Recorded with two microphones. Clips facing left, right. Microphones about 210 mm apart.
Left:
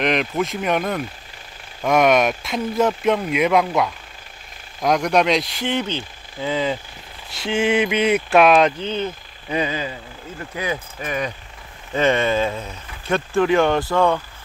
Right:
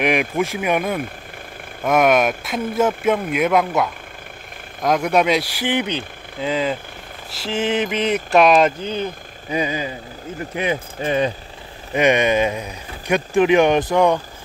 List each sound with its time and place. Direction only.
0.0 s speech: 10° right (ahead or behind)
7.4 s speech: centre (ahead or behind)
10.5 s speech: 25° right (ahead or behind)
11.9 s speech: 15° right (ahead or behind)